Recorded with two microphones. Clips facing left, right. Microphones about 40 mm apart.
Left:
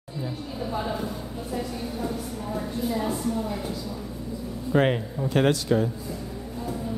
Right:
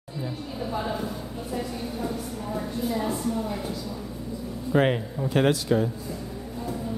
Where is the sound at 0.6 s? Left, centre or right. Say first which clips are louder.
Even; centre.